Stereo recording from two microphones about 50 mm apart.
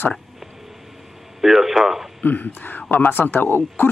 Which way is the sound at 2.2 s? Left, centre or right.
Left.